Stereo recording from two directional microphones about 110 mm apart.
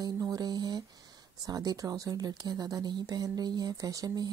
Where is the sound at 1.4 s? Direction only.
35° right (ahead or behind).